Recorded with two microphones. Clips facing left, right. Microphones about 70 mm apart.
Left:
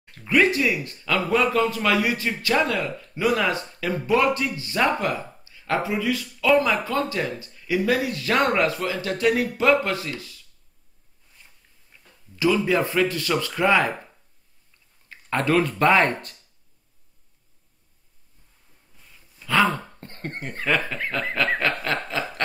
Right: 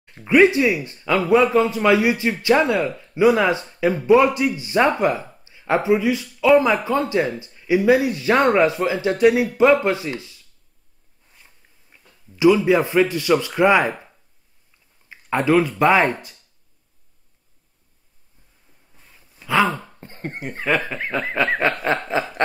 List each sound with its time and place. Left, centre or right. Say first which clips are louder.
0.1 s speech: right 6 dB; right
11.9 s speech: right 2 dB; centre
15.0 s speech: right 4 dB; centre
19.6 s speech: right 1 dB; centre; by 22.2 s right